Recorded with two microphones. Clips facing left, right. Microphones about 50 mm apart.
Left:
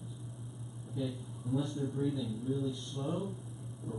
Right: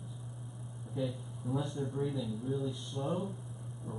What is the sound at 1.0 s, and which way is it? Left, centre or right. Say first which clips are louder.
Speech: right 1 dB; centre.